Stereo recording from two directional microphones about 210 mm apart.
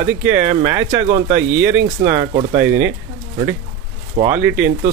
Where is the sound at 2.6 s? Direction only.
10° right (ahead or behind).